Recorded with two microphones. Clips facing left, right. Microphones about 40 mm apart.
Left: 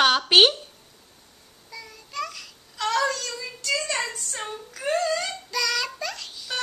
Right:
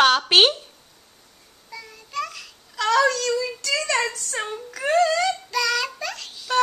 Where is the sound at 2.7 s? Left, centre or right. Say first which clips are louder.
Right 5 dB; right.